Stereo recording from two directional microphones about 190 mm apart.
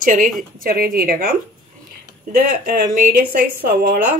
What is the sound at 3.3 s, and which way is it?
Speech, 50° right (ahead or behind).